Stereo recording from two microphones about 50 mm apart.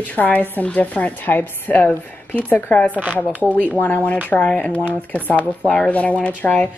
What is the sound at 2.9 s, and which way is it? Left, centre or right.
Speech, right.